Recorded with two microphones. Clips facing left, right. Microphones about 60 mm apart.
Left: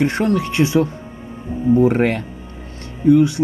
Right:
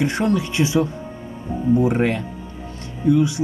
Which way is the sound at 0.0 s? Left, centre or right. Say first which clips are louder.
Left 2 dB; left.